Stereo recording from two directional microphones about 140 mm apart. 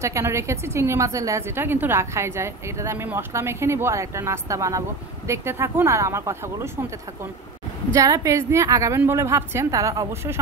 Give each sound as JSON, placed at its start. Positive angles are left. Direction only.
{"t": 0.0, "sound": "a woman's voice", "side_deg": -20}
{"t": 7.9, "sound": "a woman's voice", "side_deg": -25}